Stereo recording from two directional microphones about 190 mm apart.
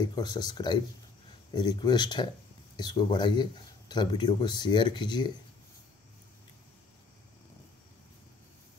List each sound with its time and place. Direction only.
0.0 s speech: 20° left (ahead or behind)